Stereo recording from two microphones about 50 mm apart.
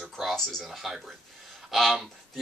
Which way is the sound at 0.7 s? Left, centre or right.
Centre.